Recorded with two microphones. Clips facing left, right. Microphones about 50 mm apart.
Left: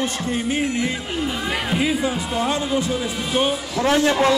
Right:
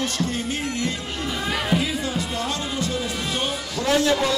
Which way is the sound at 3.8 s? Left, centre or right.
Left.